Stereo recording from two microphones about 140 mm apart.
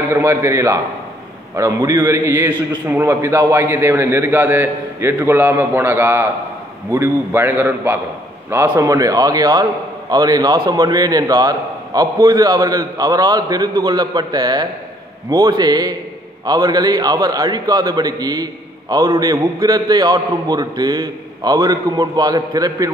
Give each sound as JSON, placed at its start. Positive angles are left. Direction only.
{"t": 0.1, "sound": "a man's voice", "side_deg": -20}